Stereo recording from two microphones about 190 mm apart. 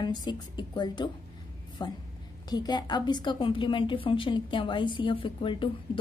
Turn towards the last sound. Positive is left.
turn(degrees=25)  # may be behind; listen again after turning